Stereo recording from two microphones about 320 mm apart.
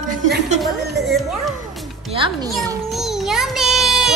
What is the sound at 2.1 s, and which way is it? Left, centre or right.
Music, centre.